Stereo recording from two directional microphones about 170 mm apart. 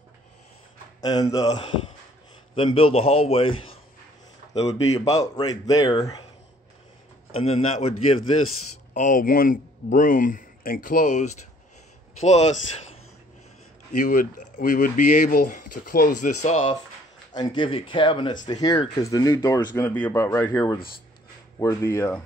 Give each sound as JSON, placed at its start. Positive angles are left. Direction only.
{"t": 1.0, "sound": "speech", "side_deg": 20}
{"t": 2.5, "sound": "a man's voice", "side_deg": 30}
{"t": 5.2, "sound": "speech", "side_deg": 25}
{"t": 7.3, "sound": "a man's voice", "side_deg": 40}
{"t": 8.9, "sound": "a man's voice", "side_deg": 50}
{"t": 13.9, "sound": "speech", "side_deg": 50}
{"t": 16.3, "sound": "a man's voice", "side_deg": 40}
{"t": 17.3, "sound": "speech", "side_deg": 25}